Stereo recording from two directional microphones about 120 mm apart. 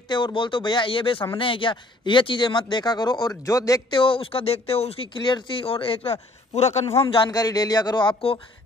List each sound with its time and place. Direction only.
0.1 s speech: 40° left (ahead or behind)
3.9 s speech: 45° left (ahead or behind)
6.5 s a man's voice: 60° left (ahead or behind)
7.2 s speech: 30° left (ahead or behind)